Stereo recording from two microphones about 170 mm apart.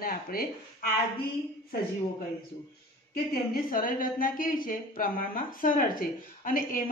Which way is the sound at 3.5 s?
55° left (ahead or behind).